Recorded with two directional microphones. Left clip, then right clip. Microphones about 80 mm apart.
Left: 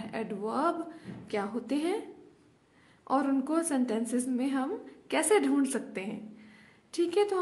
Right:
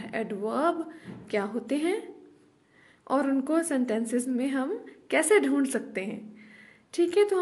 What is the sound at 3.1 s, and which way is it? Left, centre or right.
A woman's voice, right.